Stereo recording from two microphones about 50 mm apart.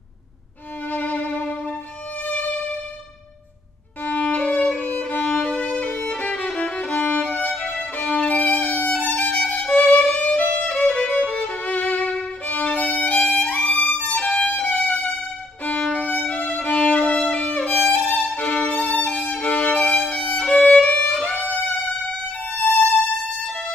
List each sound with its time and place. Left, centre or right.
0.8 s music: left
4.0 s violin: left
4.8 s violin: left
5.5 s violin: centre
9.4 s violin: centre
9.8 s violin: left
20.8 s music: left
22.5 s violin: left